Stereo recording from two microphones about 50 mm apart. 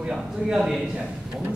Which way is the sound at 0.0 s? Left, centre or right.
Centre.